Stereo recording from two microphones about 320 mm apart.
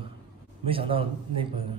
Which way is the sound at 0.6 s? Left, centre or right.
Centre.